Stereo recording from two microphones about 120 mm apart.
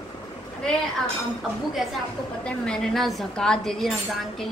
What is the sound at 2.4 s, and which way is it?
A woman's voice, 5° left (ahead or behind).